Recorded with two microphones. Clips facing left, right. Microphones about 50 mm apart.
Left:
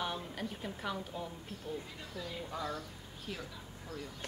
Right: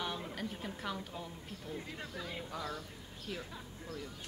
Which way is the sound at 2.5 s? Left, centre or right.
Centre.